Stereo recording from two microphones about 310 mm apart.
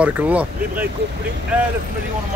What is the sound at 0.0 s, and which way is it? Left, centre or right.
Speech, centre.